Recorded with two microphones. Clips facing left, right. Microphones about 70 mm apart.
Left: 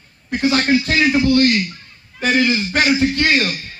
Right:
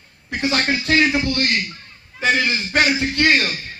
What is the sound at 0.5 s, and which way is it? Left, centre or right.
Speech, right.